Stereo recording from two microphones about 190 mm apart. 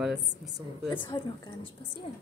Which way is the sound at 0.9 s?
25° left (ahead or behind).